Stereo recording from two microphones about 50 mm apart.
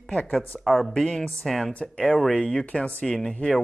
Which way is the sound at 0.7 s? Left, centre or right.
Centre.